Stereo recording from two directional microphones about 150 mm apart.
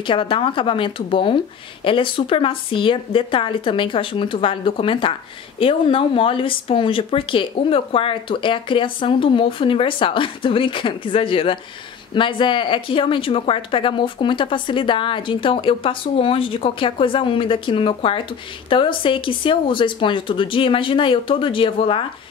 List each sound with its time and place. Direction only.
0.0 s speech: 35° left (ahead or behind)